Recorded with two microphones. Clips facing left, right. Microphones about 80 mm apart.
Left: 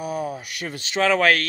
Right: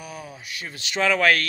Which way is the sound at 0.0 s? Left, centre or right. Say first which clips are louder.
Left 10 dB; left.